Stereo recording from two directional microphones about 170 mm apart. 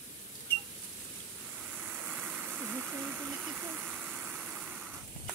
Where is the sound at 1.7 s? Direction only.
5° right (ahead or behind).